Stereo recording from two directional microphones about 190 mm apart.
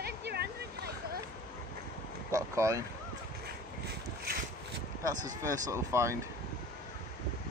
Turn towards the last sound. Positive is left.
turn(degrees=-15)  # may be behind; listen again after turning